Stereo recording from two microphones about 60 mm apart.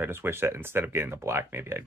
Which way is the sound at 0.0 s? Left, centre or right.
Right.